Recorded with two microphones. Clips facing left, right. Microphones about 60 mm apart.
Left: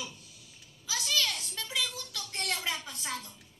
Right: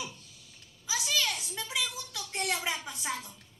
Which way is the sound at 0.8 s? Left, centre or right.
Centre.